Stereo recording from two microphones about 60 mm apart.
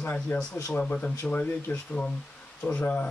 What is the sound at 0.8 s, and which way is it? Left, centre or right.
Speech, left.